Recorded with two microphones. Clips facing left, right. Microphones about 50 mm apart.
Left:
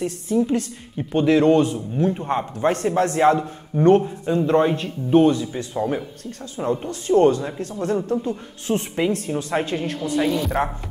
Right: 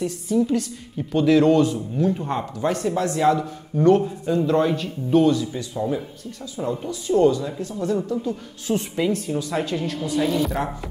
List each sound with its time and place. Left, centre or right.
0.0 s speech: left
2.7 s a woman's voice: left
3.7 s a woman's voice: left